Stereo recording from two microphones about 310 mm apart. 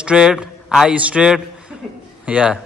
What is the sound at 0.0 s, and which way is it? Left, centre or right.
A man's voice, centre.